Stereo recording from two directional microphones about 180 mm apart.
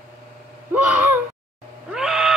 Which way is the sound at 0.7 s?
10° right (ahead or behind).